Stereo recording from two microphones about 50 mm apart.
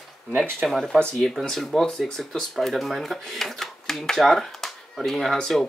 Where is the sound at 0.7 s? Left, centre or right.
Centre.